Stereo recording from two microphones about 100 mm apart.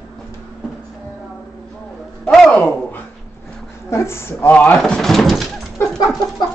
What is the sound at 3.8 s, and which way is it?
Speech, 25° left (ahead or behind).